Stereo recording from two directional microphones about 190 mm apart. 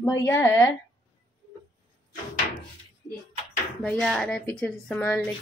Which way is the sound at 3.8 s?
5° left (ahead or behind).